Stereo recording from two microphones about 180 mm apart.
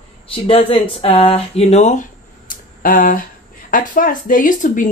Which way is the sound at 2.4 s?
50° left (ahead or behind).